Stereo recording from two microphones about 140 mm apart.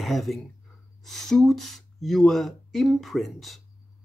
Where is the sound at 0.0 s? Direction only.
Centre (ahead or behind).